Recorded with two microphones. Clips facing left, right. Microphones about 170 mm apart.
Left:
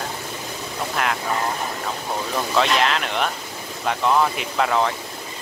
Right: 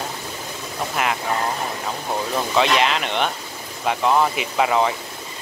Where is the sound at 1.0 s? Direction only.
5° right (ahead or behind).